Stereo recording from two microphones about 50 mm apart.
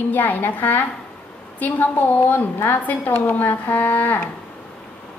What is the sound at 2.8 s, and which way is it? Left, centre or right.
A woman's voice, left.